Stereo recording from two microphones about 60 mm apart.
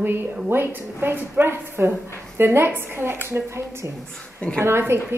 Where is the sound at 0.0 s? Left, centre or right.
Right.